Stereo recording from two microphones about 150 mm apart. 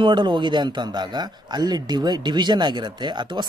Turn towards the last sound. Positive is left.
turn(degrees=-30)  # may be behind; listen again after turning